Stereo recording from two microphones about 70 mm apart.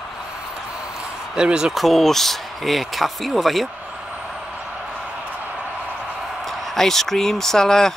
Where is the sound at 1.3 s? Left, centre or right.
Centre.